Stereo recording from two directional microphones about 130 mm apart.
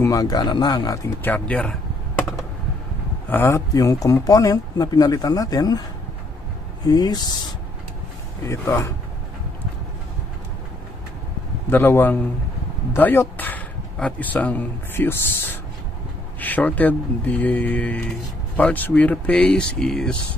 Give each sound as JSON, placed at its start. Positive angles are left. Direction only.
{"t": 0.0, "sound": "speech", "side_deg": 25}
{"t": 1.2, "sound": "speech", "side_deg": 10}
{"t": 3.3, "sound": "speech", "side_deg": 20}
{"t": 6.9, "sound": "speech", "side_deg": 30}
{"t": 8.5, "sound": "speech", "side_deg": 25}
{"t": 11.7, "sound": "a man's voice", "side_deg": 15}